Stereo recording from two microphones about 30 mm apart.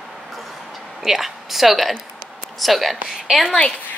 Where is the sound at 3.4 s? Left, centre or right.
Left.